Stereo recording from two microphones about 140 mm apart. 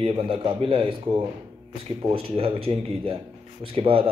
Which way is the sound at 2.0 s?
40° right (ahead or behind).